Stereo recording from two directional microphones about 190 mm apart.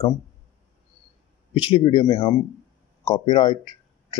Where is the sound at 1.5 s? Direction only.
25° left (ahead or behind).